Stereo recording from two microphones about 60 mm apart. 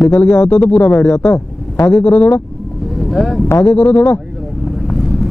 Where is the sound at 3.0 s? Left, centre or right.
Centre.